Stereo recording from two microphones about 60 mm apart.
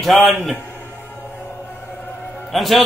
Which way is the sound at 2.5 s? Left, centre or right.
Centre.